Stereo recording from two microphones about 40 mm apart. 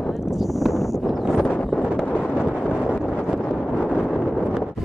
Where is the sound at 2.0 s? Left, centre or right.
Left.